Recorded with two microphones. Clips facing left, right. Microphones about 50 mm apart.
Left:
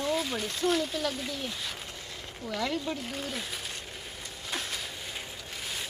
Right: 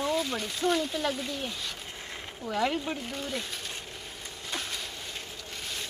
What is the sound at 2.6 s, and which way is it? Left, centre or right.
Speech, right.